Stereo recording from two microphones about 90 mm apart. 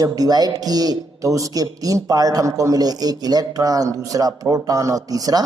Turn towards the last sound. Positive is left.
turn(degrees=-45)  # may be behind; listen again after turning